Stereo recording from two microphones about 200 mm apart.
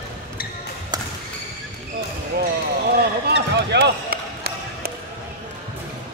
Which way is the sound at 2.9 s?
55° right (ahead or behind).